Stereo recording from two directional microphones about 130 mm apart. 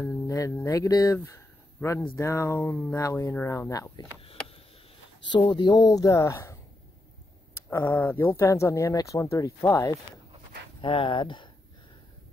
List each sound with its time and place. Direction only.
0.3 s speech: 25° left (ahead or behind)
5.2 s speech: 35° left (ahead or behind)
10.8 s speech: 40° left (ahead or behind)